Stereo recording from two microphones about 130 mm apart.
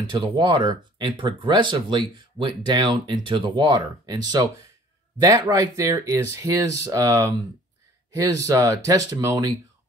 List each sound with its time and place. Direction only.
0.1 s speech: 40° right (ahead or behind)